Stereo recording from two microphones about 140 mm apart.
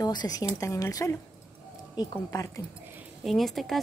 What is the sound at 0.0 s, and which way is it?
Speech, 30° left (ahead or behind).